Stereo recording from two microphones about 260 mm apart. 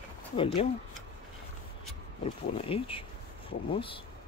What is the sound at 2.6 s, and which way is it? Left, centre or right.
Speech, left.